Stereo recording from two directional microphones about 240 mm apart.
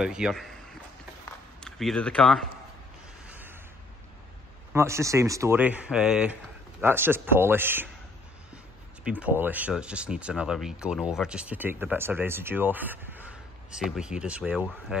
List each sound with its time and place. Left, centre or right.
0.0 s speech: centre
1.6 s speech: centre
3.3 s a sound: centre
4.7 s speech: centre
9.0 s speech: centre